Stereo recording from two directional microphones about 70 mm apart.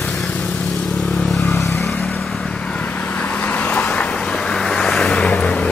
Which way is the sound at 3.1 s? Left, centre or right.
Left.